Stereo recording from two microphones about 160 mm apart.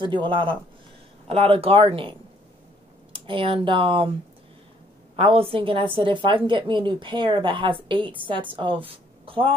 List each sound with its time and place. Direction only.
0.0 s a woman's voice: 30° right (ahead or behind)
5.1 s a woman's voice: 35° right (ahead or behind)